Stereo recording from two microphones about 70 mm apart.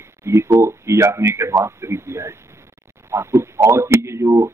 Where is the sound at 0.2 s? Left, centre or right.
Right.